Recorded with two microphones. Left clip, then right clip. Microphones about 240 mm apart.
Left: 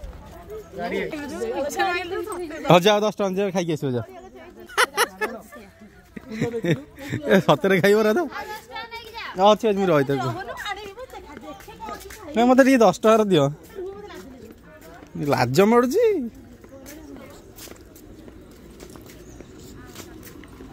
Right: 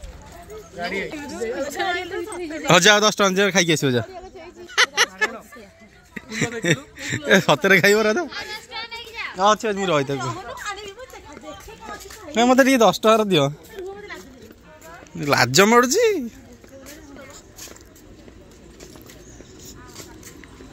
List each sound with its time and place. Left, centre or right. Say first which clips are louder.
0.7 s speech: even; centre
4.7 s a sound: right 3 dB; left
6.1 s speech: right 2 dB; centre
8.9 s a sound: left 1 dB; left
11.8 s speech: left 3 dB; centre
15.1 s speech: right 3 dB; centre